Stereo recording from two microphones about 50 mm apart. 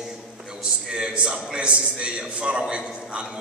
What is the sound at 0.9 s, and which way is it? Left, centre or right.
A man's voice, right.